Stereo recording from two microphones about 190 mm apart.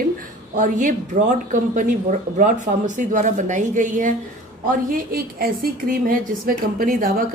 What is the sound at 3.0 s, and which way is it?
A woman's voice, 40° right (ahead or behind).